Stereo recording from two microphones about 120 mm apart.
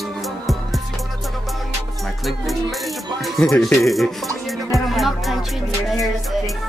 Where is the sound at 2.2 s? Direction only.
Centre (ahead or behind).